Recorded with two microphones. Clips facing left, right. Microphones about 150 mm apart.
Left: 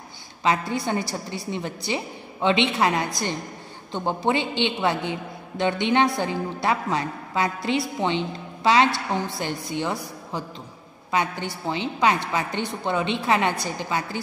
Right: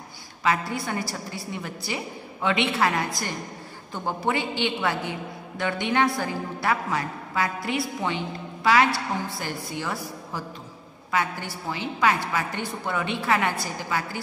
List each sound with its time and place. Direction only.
0.4 s a woman's voice: 25° left (ahead or behind)